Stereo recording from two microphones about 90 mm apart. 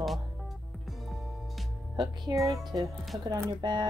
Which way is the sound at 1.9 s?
50° right (ahead or behind).